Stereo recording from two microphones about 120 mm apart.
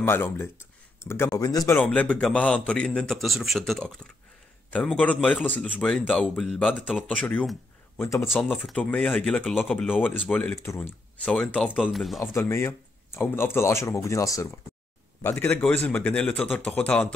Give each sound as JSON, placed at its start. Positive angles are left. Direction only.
{"t": 0.0, "sound": "speech", "side_deg": 20}
{"t": 1.8, "sound": "a man's voice", "side_deg": 10}
{"t": 5.0, "sound": "a man's voice", "side_deg": 10}
{"t": 8.0, "sound": "speech", "side_deg": 20}
{"t": 8.7, "sound": "a man's voice", "side_deg": 10}
{"t": 10.5, "sound": "speech", "side_deg": 20}
{"t": 11.2, "sound": "a man's voice", "side_deg": 10}
{"t": 12.2, "sound": "speech", "side_deg": 25}
{"t": 15.2, "sound": "a man's voice", "side_deg": 15}